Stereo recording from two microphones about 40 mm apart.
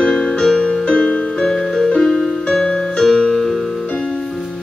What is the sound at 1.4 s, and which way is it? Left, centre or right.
Music, centre.